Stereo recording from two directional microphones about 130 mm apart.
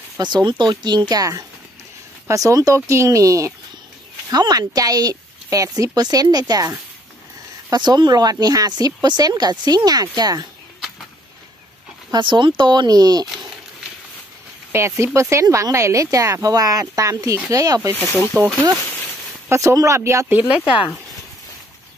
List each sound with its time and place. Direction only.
0.2 s speech: 35° right (ahead or behind)
12.1 s speech: 40° right (ahead or behind)
14.7 s speech: 20° right (ahead or behind)